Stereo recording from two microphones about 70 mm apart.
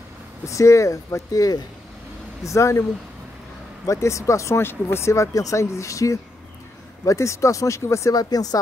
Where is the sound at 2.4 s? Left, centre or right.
Left.